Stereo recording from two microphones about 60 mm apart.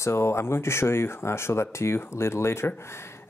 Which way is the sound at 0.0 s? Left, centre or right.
Left.